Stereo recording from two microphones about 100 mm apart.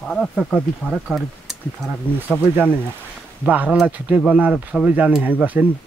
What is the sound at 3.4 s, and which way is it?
Speech, 15° right (ahead or behind).